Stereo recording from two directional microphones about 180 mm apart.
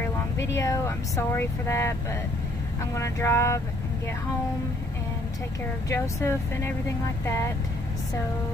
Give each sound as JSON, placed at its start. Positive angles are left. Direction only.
{"t": 0.6, "sound": "speech", "side_deg": 15}
{"t": 5.9, "sound": "speech", "side_deg": 15}